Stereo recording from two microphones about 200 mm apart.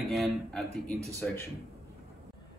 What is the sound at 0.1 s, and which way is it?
Speech, centre (ahead or behind).